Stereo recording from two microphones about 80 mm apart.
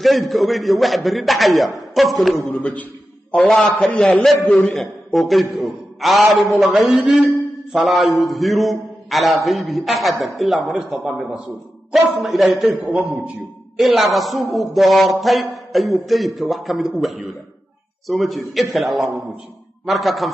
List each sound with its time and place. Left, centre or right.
0.0 s a man's voice: centre
2.6 s a sound: centre
3.3 s a man's voice: centre
12.6 s a man's voice: centre
13.7 s a man's voice: centre